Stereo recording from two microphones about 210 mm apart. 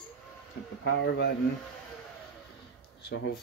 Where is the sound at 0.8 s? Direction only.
60° left (ahead or behind).